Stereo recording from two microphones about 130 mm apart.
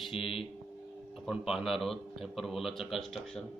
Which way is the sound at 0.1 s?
45° left (ahead or behind).